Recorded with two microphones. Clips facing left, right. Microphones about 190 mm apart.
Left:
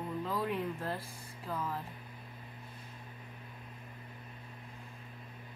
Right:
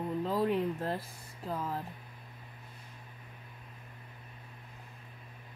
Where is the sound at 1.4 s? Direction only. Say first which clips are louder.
Right 2 dB; 35° right (ahead or behind).